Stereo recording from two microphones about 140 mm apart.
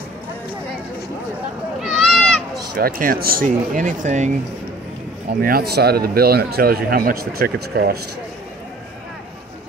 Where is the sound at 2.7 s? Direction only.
90° right; by 4.3 s 60° right (ahead or behind).